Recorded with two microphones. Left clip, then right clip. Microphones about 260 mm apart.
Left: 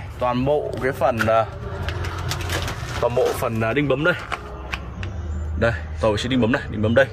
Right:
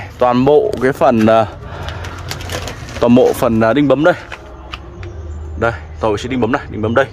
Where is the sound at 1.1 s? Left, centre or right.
Right.